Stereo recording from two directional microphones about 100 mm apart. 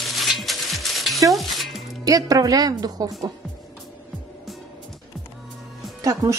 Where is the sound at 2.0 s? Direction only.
35° right (ahead or behind).